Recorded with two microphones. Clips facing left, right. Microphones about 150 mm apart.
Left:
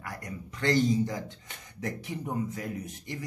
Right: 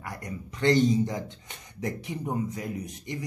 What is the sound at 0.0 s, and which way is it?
Speech, 20° right (ahead or behind).